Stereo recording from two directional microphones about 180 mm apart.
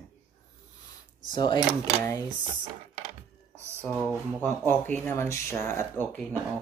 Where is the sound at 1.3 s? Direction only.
25° left (ahead or behind).